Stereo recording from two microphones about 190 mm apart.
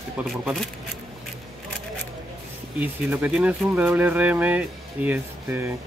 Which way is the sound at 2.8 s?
10° right (ahead or behind).